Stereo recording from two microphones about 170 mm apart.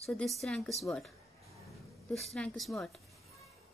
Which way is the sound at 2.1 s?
Centre (ahead or behind).